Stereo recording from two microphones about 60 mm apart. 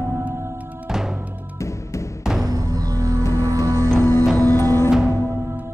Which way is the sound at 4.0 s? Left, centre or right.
Left.